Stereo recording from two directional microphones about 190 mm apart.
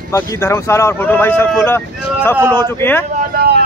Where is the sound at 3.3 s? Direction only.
55° right (ahead or behind).